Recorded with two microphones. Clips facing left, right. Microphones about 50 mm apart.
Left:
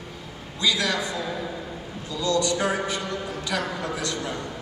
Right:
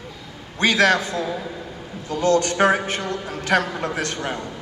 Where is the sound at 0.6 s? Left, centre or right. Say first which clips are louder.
Right 7 dB; right.